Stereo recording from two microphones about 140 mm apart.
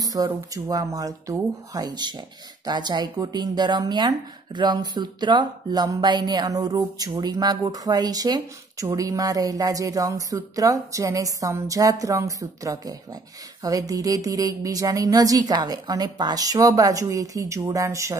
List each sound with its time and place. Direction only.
0.0 s speech: 25° right (ahead or behind)